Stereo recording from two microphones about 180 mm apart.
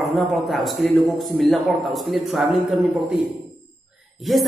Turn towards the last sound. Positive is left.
turn(degrees=0)  # may be behind; listen again after turning